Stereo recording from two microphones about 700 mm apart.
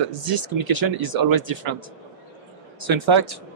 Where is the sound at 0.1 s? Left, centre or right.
Right.